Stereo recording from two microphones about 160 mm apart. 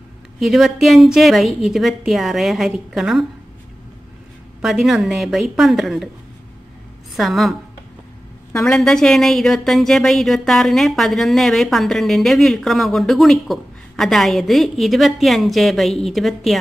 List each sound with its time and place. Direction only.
0.4 s speech: centre (ahead or behind)
4.6 s speech: centre (ahead or behind)
7.2 s speech: centre (ahead or behind)
8.6 s speech: 5° left (ahead or behind)